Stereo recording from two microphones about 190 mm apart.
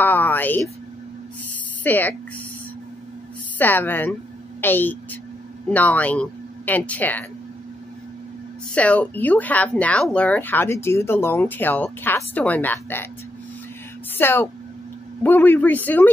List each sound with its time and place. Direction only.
0.0 s a sound: 10° left (ahead or behind)
1.8 s speech: 10° left (ahead or behind)
3.5 s a woman's voice: 10° left (ahead or behind)
8.7 s speech: 5° left (ahead or behind)
14.1 s speech: 10° left (ahead or behind)